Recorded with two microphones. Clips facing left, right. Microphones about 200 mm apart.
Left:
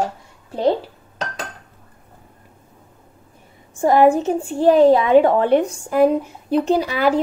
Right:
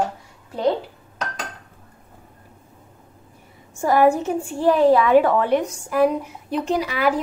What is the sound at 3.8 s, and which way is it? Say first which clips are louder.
A woman's voice: left 3 dB; 25° left (ahead or behind).